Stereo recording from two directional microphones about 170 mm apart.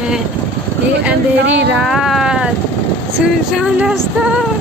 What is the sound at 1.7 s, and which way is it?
Speech, 5° right (ahead or behind).